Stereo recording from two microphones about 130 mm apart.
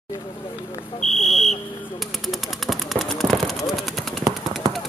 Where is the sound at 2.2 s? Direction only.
Centre (ahead or behind).